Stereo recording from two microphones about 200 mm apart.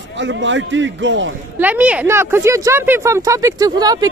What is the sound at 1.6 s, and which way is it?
Speech, 5° right (ahead or behind).